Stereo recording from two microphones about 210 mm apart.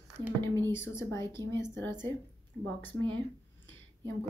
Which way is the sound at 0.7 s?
10° left (ahead or behind).